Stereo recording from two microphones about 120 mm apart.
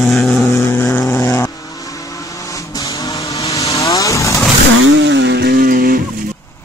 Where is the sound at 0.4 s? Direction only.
25° left (ahead or behind).